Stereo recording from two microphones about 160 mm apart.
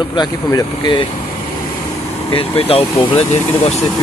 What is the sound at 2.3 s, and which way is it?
Speech, 35° left (ahead or behind).